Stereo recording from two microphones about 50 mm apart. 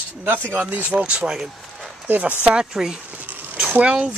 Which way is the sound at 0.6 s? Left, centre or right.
Right.